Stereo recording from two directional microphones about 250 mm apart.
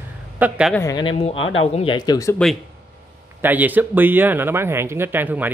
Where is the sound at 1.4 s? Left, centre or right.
Left.